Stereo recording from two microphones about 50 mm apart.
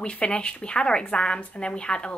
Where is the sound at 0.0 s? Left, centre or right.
Left.